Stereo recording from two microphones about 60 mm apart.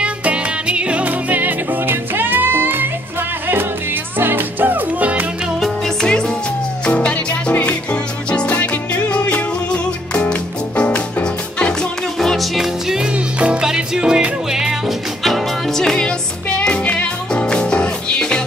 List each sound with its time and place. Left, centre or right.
0.0 s music: right
5.6 s music: centre
12.2 s music: centre
15.2 s music: centre